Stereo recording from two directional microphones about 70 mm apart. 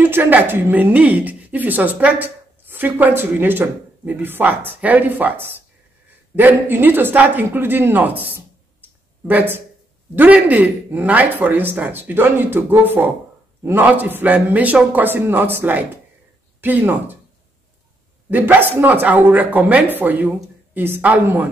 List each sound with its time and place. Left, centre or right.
0.0 s a woman's voice: right
18.3 s a woman's voice: right